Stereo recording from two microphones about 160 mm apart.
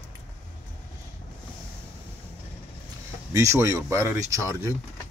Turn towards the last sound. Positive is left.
turn(degrees=-20)  # may be behind; listen again after turning